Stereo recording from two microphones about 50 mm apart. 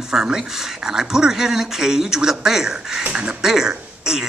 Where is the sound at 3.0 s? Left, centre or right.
Centre.